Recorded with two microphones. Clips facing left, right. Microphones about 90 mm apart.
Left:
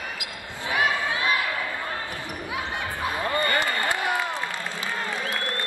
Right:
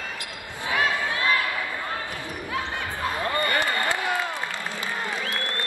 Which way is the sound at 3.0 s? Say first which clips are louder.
Even; 20° left (ahead or behind).